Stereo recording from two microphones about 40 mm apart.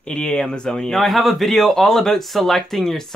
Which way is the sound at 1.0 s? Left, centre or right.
Centre.